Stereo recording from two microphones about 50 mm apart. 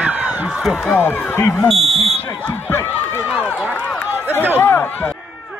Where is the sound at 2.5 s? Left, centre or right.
Left.